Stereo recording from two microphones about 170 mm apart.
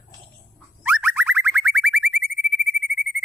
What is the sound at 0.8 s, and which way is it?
Boing, 10° right (ahead or behind).